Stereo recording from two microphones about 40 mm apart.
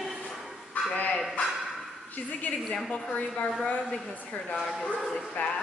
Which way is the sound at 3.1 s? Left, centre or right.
Left.